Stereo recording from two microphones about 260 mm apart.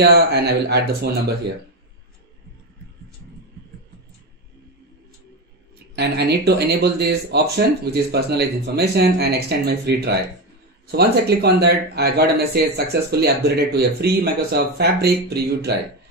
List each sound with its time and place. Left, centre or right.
0.0 s speech: right
5.9 s speech: right